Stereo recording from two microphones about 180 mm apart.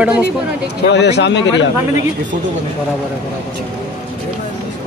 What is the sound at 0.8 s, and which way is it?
Speech, 70° left (ahead or behind).